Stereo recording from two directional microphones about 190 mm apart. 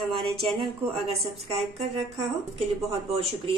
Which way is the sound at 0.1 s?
30° right (ahead or behind).